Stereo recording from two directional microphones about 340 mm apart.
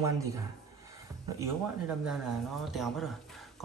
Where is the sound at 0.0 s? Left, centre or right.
Centre.